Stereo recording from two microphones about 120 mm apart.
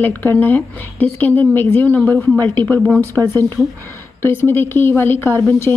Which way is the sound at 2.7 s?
Centre (ahead or behind).